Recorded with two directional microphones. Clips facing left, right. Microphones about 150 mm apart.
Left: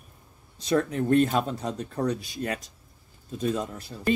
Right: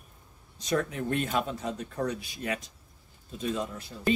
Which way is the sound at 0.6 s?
35° left (ahead or behind).